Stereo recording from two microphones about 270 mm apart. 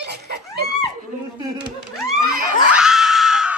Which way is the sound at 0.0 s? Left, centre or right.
Right.